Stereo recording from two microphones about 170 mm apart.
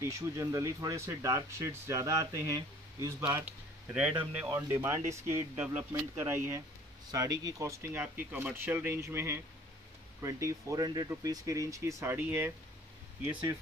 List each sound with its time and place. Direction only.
0.0 s speech: 15° right (ahead or behind)
4.3 s speech: 10° right (ahead or behind)